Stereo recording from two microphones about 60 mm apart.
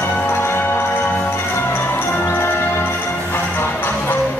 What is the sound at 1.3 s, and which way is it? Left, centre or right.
Music, left.